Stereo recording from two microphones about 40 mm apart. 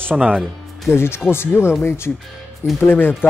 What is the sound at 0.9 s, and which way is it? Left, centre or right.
Speech, left.